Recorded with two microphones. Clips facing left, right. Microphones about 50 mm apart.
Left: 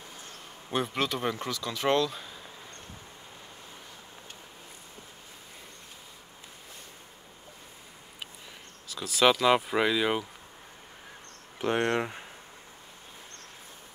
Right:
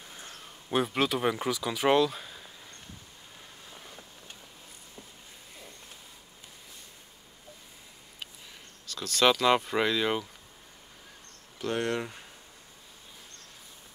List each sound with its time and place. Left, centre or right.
0.7 s speech: centre
8.8 s speech: centre
11.6 s speech: left